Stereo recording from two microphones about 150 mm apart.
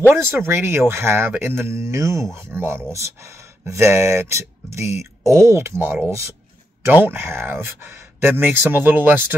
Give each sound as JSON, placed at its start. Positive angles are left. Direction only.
{"t": 0.1, "sound": "speech", "side_deg": -15}